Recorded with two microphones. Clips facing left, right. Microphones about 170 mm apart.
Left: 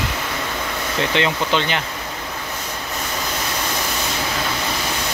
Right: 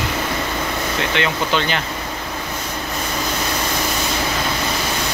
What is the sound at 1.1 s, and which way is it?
Speech, 20° left (ahead or behind).